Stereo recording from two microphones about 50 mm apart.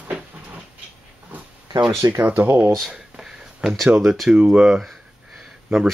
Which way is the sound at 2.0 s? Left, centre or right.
Right.